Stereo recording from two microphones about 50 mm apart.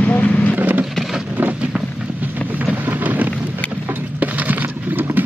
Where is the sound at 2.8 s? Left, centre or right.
Right.